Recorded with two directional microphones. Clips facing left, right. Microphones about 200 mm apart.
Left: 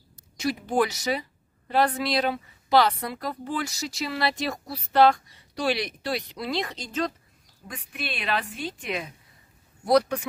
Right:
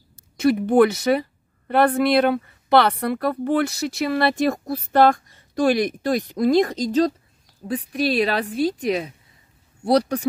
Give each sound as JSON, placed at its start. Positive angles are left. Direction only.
{"t": 0.4, "sound": "a woman's voice", "side_deg": -55}